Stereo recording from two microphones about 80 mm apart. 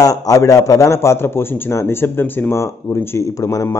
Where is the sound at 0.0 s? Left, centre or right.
Left.